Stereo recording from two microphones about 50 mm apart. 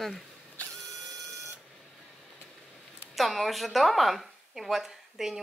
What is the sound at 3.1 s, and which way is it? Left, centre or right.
A woman's voice, centre.